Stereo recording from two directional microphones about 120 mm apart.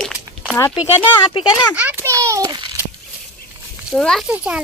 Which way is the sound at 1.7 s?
15° right (ahead or behind).